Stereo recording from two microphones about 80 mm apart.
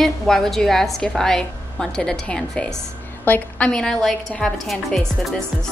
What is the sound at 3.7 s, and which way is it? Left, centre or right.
A woman's voice, centre.